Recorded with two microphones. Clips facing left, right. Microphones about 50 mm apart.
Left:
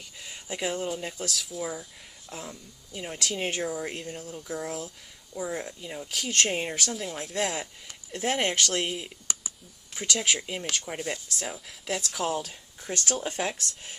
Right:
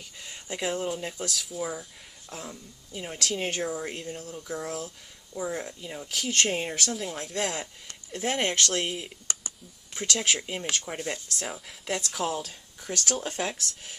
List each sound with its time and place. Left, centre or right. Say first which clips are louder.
0.2 s speech: even; centre
3.2 s speech: even; centre
12.8 s speech: even; centre
13.1 s speech: left 1 dB; centre